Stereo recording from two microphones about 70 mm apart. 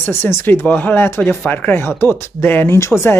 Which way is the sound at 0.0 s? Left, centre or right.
Left.